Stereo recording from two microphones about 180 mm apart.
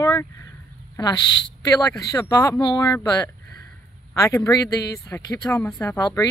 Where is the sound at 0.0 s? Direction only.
20° left (ahead or behind).